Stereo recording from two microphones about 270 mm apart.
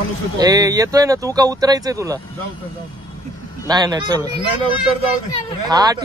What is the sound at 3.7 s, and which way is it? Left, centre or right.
Speech, centre.